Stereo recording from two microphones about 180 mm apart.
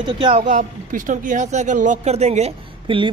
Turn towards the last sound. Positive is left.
turn(degrees=-30)  # may be behind; listen again after turning